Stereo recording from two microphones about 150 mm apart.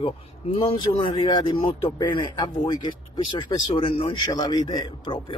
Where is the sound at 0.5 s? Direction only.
40° left (ahead or behind).